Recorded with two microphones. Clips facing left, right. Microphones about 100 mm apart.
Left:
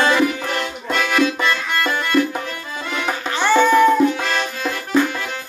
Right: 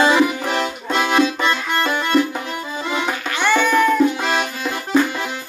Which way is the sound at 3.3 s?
35° left (ahead or behind).